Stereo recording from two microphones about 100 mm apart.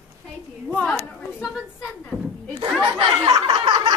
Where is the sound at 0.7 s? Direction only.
5° left (ahead or behind).